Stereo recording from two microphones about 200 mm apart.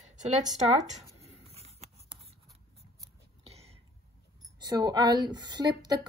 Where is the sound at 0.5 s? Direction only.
35° right (ahead or behind).